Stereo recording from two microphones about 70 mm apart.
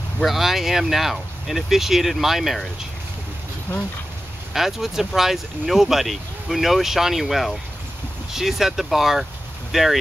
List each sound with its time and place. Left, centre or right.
0.2 s speech: centre
4.6 s speech: centre